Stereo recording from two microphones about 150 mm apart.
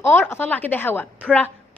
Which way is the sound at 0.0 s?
15° left (ahead or behind).